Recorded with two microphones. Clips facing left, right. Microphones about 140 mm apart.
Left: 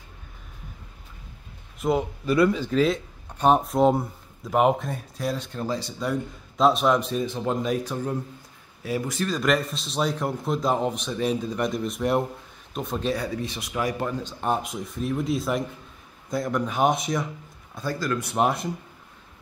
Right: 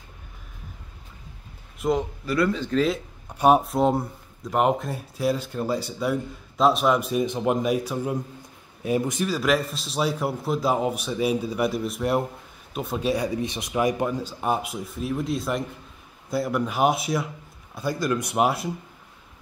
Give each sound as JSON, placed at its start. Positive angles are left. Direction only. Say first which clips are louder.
{"t": 1.8, "sound": "a man's voice", "louder": "even", "side_deg": 5}
{"t": 2.2, "sound": "speech", "louder": "left 3 dB", "side_deg": 20}
{"t": 2.5, "sound": "a man's voice", "louder": "left 1 dB", "side_deg": 5}
{"t": 3.3, "sound": "speech", "louder": "right 2 dB", "side_deg": -10}
{"t": 9.3, "sound": "a man's voice", "louder": "left 1 dB", "side_deg": -5}
{"t": 13.1, "sound": "a man's voice", "louder": "right 3 dB", "side_deg": -15}
{"t": 17.7, "sound": "speech", "louder": "right 2 dB", "side_deg": -15}
{"t": 18.4, "sound": "a man's voice", "louder": "even", "side_deg": -5}